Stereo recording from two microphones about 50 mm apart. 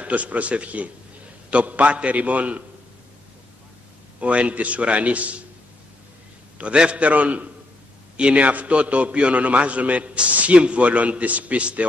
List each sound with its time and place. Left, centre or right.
0.0 s a man's voice: right
4.2 s a man's voice: right
6.6 s a man's voice: right